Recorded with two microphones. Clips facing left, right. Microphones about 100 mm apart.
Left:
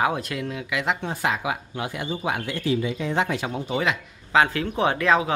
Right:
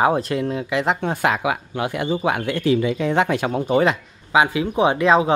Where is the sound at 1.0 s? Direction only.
65° right (ahead or behind); by 3.9 s 45° right (ahead or behind).